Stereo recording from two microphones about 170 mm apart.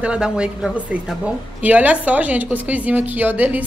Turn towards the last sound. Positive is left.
turn(degrees=-10)  # may be behind; listen again after turning